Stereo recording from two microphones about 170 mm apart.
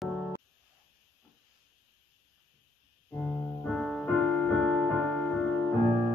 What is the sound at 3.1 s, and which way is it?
Piano, 10° left (ahead or behind).